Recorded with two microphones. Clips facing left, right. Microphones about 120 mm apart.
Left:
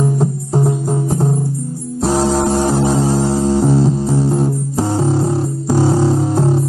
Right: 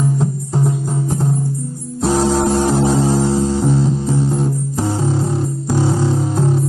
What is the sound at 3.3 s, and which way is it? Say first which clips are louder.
Music: left 1 dB; 35° left (ahead or behind).